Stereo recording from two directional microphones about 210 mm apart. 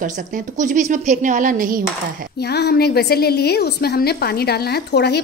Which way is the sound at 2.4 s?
50° left (ahead or behind).